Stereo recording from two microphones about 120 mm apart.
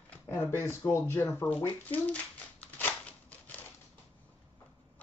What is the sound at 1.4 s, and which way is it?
Shuffling cards, 10° left (ahead or behind).